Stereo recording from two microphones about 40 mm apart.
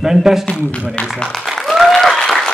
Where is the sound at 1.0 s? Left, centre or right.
Left.